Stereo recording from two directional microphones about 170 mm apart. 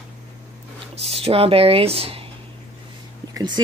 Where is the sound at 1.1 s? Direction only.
35° right (ahead or behind).